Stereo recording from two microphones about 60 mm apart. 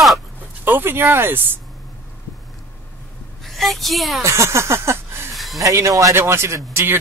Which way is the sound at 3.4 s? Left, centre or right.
Centre.